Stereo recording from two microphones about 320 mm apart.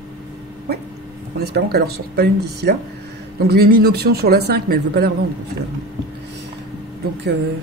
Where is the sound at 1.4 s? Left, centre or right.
Right.